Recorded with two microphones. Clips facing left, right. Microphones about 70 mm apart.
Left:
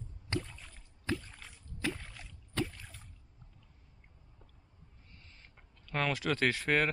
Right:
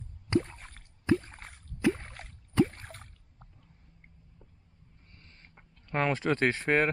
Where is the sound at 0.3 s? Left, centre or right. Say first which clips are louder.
Right 10 dB; right.